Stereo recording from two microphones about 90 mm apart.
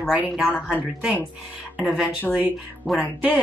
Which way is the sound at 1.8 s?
5° right (ahead or behind).